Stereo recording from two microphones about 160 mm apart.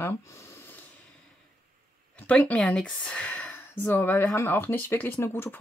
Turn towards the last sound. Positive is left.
turn(degrees=15)  # may be behind; listen again after turning